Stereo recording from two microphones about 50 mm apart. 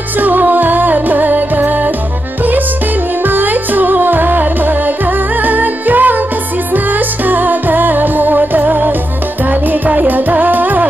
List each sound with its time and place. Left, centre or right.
0.2 s music: right
3.3 s music: right
7.2 s music: right